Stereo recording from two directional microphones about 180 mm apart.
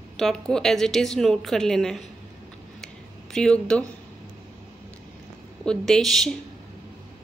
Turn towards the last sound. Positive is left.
turn(degrees=0)  # may be behind; listen again after turning